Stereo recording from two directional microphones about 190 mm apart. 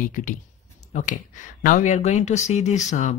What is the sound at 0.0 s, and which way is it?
Mantra, 45° left (ahead or behind).